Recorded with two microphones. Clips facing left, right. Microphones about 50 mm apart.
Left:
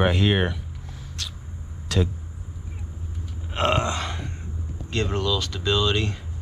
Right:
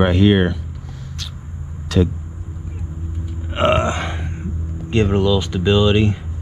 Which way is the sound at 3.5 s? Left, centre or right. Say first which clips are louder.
Right 6 dB; right.